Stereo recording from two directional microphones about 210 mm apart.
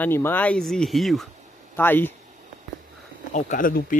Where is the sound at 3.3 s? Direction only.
40° left (ahead or behind).